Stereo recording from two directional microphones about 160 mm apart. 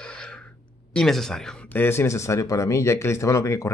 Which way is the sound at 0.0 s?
5° left (ahead or behind).